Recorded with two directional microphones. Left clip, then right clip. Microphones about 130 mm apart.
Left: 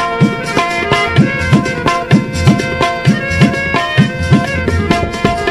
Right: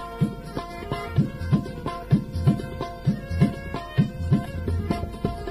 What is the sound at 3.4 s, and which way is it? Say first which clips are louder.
Music: left 16 dB; 35° right (ahead or behind).